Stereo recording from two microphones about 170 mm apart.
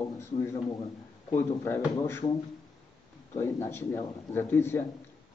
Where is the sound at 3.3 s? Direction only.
15° left (ahead or behind).